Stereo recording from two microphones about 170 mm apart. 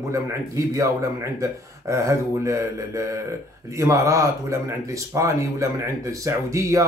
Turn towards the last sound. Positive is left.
turn(degrees=-20)  # may be behind; listen again after turning